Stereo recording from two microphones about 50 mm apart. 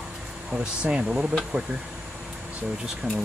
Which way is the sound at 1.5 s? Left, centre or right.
Right.